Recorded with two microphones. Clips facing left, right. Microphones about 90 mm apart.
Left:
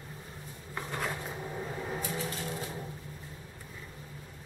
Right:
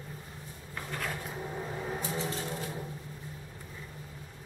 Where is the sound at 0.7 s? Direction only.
20° left (ahead or behind).